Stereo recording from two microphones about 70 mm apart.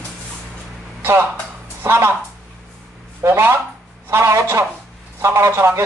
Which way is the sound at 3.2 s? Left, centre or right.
Right.